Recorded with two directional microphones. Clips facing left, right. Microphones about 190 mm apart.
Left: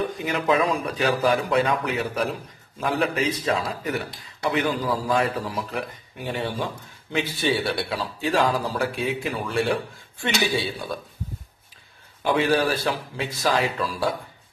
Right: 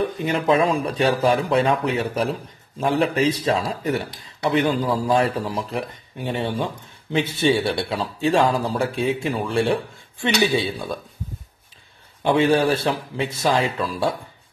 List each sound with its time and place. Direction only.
0.2 s a man's voice: 30° right (ahead or behind)
12.2 s a man's voice: 25° right (ahead or behind)